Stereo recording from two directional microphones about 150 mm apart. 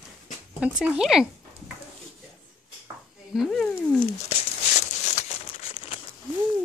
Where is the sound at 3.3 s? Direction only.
Centre (ahead or behind).